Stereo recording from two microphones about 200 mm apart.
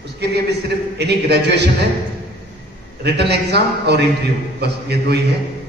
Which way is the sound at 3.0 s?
55° right (ahead or behind).